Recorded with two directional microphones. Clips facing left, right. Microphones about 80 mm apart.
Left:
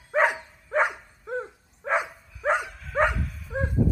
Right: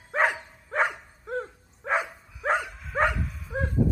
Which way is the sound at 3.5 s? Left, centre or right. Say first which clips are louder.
Left 1 dB; centre.